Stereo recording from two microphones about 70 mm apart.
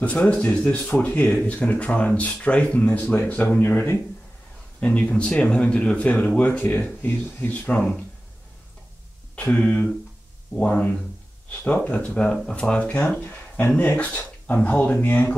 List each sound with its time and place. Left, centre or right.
0.0 s speech: left
4.7 s speech: centre
9.3 s speech: centre